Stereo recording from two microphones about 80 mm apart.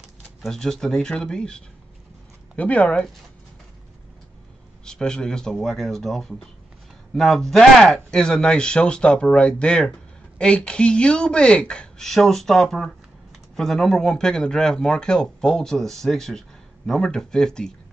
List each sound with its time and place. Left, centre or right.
0.4 s a man's voice: centre
4.8 s a man's voice: centre